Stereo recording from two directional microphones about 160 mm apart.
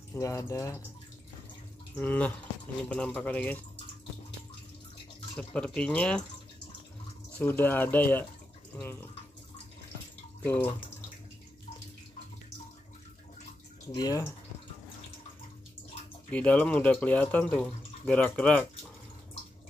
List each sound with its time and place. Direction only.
0.1 s speech: 20° left (ahead or behind)
2.0 s speech: 10° left (ahead or behind)
5.4 s speech: 5° left (ahead or behind)
7.3 s speech: 10° left (ahead or behind)
10.4 s speech: 10° left (ahead or behind)
13.9 s speech: 20° left (ahead or behind)
16.3 s speech: 10° left (ahead or behind)